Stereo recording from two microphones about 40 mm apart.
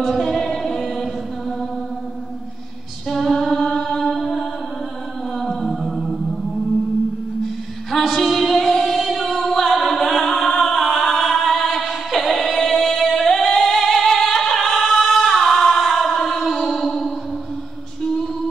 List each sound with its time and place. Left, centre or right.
0.1 s chant: centre
3.1 s a sound: centre
5.3 s music: centre
8.1 s music: centre
13.1 s singing: centre
18.0 s music: centre